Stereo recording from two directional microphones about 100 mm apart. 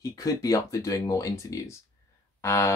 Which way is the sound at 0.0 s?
35° left (ahead or behind).